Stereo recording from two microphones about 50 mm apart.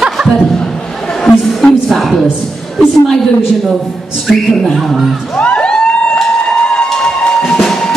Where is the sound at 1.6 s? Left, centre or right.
Centre.